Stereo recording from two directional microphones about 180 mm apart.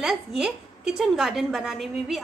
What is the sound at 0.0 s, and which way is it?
A woman's voice, 5° right (ahead or behind).